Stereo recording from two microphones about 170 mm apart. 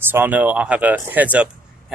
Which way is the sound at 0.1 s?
10° right (ahead or behind).